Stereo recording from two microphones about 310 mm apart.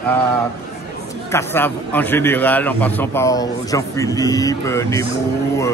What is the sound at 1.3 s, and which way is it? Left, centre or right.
A man's voice, centre.